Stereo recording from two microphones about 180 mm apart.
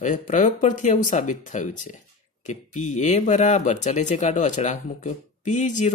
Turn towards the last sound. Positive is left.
turn(degrees=45)  # may be behind; listen again after turning